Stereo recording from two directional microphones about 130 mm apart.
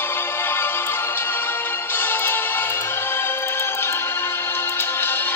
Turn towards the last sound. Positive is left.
turn(degrees=15)  # may be behind; listen again after turning